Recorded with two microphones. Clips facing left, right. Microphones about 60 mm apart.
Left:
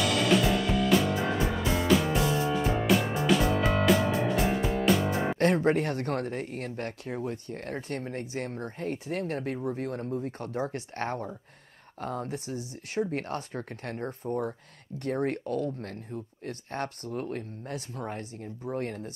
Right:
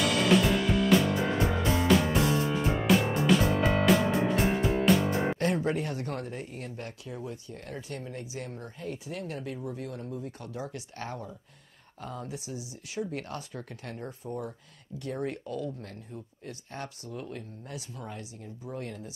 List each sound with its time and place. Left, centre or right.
0.0 s music: centre
5.4 s speech: left